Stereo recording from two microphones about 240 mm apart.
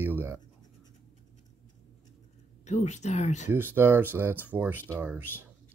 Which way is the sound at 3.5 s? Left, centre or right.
Centre.